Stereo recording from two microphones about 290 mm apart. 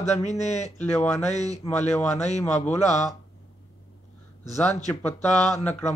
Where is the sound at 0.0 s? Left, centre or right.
Left.